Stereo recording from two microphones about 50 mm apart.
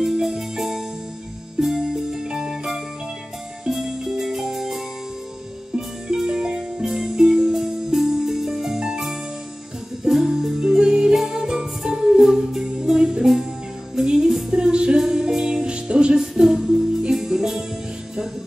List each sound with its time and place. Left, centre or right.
0.0 s music: centre
15.6 s music: centre
16.1 s music: centre